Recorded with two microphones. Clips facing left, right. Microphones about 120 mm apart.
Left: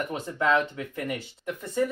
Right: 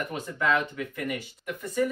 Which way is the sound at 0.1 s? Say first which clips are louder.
Left 2 dB; 30° left (ahead or behind).